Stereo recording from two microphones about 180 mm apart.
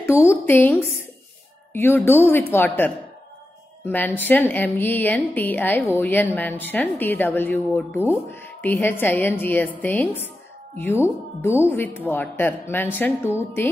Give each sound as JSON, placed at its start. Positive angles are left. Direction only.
{"t": 0.3, "sound": "a woman's voice", "side_deg": 10}